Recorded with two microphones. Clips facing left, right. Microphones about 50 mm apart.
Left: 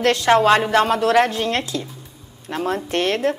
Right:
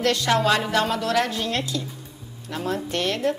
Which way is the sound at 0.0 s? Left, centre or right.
Left.